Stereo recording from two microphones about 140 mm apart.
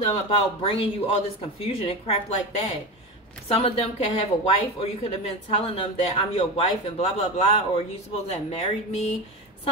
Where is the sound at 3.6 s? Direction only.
45° left (ahead or behind).